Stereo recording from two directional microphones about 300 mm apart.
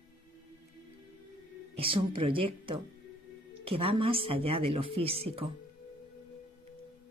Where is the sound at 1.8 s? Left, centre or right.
Centre.